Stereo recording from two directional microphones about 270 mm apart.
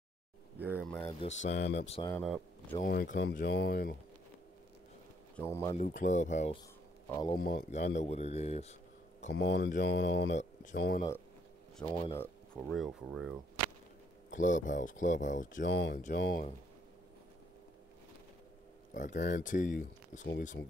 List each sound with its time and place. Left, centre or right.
0.6 s a sound: centre
1.5 s speech: left
1.8 s speech: left
2.0 s speech: centre
2.7 s speech: left
5.3 s speech: centre
5.8 s speech: left
9.3 s speech: left
11.8 s speech: centre
14.3 s speech: left
15.6 s speech: left
18.9 s speech: left